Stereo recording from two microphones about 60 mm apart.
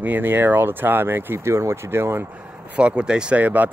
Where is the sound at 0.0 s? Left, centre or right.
Right.